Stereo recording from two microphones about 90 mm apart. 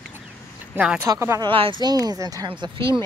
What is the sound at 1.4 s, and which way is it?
Speech, 75° right (ahead or behind).